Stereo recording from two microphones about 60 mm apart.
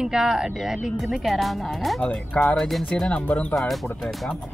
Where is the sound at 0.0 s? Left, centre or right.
Centre.